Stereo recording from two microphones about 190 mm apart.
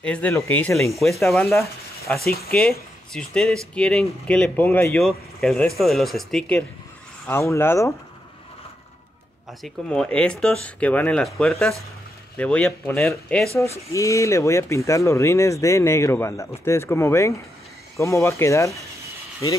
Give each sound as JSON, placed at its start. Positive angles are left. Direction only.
{"t": 0.0, "sound": "speech", "side_deg": 5}
{"t": 1.2, "sound": "speech", "side_deg": 0}
{"t": 7.2, "sound": "speech", "side_deg": 15}
{"t": 9.6, "sound": "speech", "side_deg": 5}